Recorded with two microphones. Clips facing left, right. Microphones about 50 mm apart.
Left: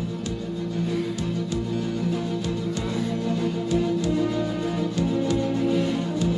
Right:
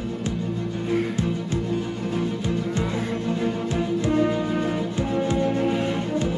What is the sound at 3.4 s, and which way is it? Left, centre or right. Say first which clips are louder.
Music: left 1 dB; right.